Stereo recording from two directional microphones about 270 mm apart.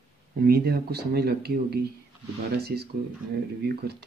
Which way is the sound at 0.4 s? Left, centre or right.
Right.